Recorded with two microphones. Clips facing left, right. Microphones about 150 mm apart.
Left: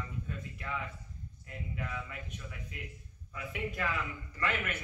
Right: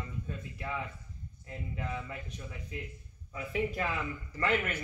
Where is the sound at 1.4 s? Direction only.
30° right (ahead or behind).